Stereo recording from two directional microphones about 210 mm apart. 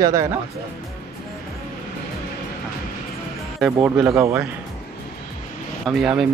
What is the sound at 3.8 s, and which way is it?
Speech, 10° right (ahead or behind).